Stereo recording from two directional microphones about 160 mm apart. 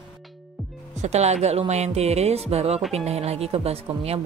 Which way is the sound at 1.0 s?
45° right (ahead or behind).